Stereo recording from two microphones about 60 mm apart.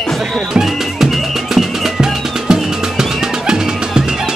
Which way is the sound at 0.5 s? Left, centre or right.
Centre.